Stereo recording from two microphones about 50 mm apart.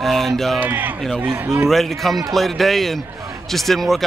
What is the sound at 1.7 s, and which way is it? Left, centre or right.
A man's voice, centre.